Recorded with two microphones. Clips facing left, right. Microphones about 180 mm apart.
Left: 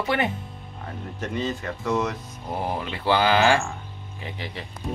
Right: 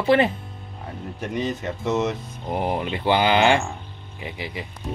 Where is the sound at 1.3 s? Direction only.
20° right (ahead or behind).